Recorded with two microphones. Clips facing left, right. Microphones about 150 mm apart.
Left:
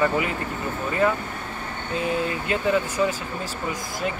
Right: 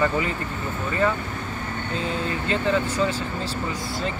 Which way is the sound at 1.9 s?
10° left (ahead or behind).